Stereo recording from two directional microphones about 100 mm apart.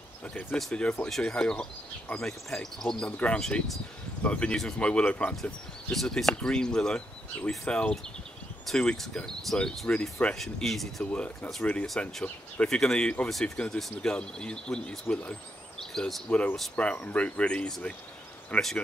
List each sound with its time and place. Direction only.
0.3 s speech: 15° left (ahead or behind)
11.1 s speech: 15° left (ahead or behind)